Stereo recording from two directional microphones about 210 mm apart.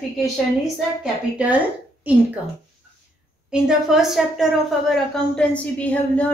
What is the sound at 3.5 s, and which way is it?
A woman's voice, centre (ahead or behind).